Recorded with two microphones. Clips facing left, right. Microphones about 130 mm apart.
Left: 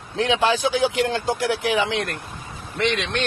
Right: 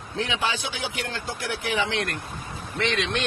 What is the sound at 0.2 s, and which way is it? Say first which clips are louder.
A man's voice: left 8 dB; 90° left.